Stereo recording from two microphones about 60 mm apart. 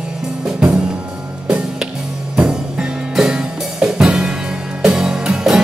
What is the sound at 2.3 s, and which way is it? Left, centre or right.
Music, centre.